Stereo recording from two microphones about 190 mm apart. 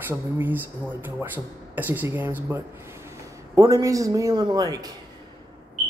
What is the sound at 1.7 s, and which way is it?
A woman's voice, 10° right (ahead or behind).